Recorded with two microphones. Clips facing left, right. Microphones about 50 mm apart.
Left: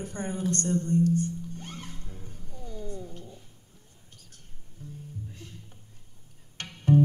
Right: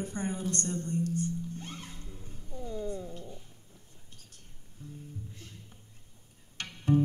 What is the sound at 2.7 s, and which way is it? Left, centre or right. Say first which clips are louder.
Cat: right 3 dB; right.